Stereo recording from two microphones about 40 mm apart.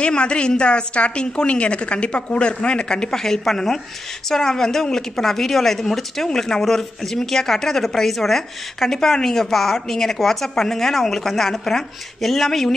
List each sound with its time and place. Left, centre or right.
0.0 s a woman's voice: left; by 12.7 s centre